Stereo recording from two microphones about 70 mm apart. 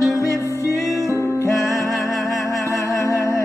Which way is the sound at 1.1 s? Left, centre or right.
Left.